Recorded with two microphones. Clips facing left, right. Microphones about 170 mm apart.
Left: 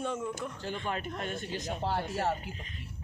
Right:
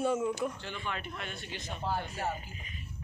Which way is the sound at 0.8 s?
40° left (ahead or behind).